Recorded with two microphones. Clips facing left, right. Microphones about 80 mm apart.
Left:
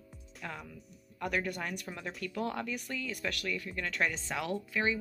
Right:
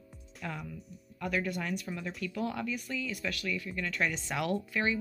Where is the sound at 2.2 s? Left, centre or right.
Left.